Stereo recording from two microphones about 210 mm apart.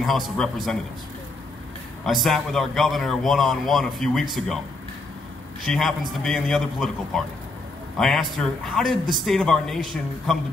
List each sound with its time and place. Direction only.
0.0 s a man's voice: centre (ahead or behind)
2.0 s a man's voice: centre (ahead or behind)
5.7 s a man's voice: centre (ahead or behind)